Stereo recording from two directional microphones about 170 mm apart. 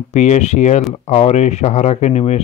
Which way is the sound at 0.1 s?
45° left (ahead or behind).